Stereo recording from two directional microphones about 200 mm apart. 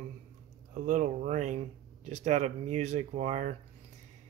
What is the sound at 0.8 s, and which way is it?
Speech, 40° right (ahead or behind).